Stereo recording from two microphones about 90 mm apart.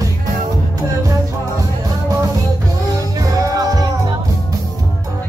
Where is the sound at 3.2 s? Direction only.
40° right (ahead or behind).